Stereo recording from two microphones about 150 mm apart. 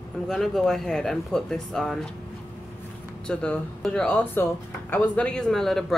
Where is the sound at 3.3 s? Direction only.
5° left (ahead or behind).